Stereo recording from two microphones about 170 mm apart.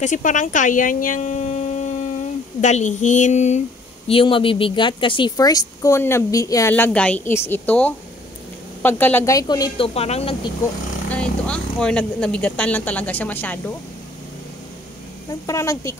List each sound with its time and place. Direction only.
0.0 s speech: 50° left (ahead or behind)
4.1 s a woman's voice: 30° left (ahead or behind)
9.9 s speech: 35° left (ahead or behind)
11.1 s speech: 5° left (ahead or behind)
15.4 s speech: 20° left (ahead or behind)